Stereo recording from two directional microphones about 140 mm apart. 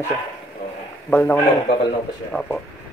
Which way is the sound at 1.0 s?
10° left (ahead or behind).